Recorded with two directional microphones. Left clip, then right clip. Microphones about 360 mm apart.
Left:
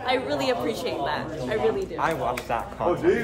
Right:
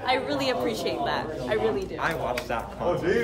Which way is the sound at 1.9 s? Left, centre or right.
Centre.